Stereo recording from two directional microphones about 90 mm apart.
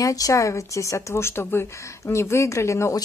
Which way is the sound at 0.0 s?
40° left (ahead or behind).